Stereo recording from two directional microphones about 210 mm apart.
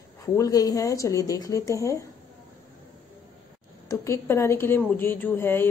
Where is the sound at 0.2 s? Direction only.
15° left (ahead or behind).